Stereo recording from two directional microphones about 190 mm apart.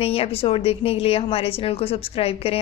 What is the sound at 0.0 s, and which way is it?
A woman's voice, 30° left (ahead or behind).